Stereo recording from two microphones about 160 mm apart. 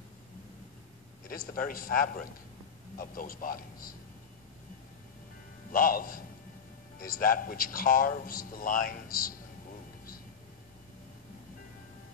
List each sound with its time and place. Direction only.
1.2 s speech: 65° left (ahead or behind)
5.7 s speech: 60° left (ahead or behind)